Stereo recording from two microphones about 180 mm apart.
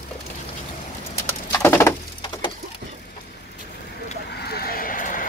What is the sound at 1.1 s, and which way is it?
Bird, 10° left (ahead or behind).